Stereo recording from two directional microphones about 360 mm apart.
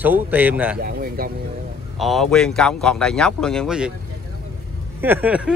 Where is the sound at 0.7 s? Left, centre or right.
Right.